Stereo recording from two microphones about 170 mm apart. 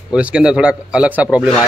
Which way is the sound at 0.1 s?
5° right (ahead or behind).